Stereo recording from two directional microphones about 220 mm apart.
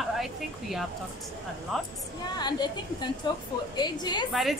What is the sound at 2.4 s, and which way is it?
A woman's voice, 20° left (ahead or behind).